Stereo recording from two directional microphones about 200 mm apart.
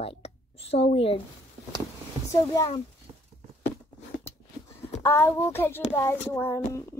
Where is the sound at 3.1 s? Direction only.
25° right (ahead or behind).